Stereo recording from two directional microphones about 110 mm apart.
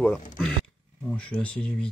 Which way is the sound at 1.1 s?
10° left (ahead or behind).